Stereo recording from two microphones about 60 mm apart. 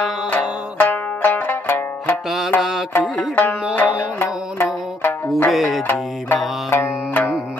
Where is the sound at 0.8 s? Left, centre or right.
Left.